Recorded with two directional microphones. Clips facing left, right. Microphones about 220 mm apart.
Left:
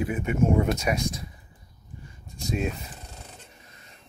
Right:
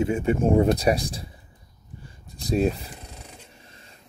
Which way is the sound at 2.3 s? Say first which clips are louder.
Right 6 dB; 35° right (ahead or behind).